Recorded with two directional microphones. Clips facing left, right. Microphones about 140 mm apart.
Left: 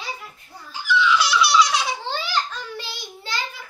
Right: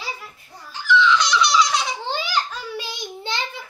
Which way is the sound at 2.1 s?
15° right (ahead or behind).